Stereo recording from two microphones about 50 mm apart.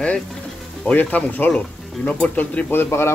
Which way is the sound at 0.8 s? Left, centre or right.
Left.